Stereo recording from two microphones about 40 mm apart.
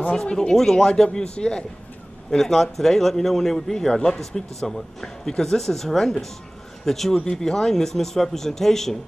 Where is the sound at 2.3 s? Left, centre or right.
Centre.